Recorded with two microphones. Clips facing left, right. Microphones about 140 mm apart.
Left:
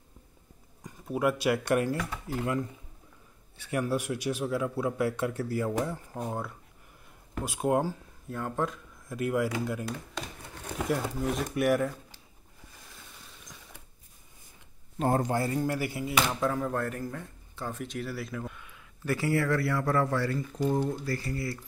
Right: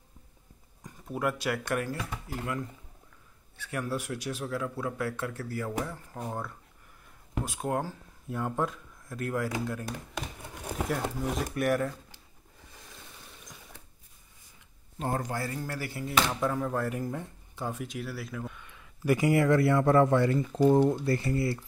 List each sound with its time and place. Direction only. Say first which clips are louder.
0.8 s speech: left 3 dB; 10° left (ahead or behind)
8.3 s speech: right 1 dB; 5° right (ahead or behind)
10.1 s crumpling: right 1 dB; 10° right (ahead or behind)
11.4 s speech: left 2 dB; 5° left (ahead or behind)
15.1 s speech: left 5 dB; 25° left (ahead or behind); by 17.0 s 5° right (ahead or behind)
17.0 s speech: right 2 dB; 15° right (ahead or behind); by 18.9 s centre (ahead or behind)
19.0 s speech: right 4 dB; 15° right (ahead or behind)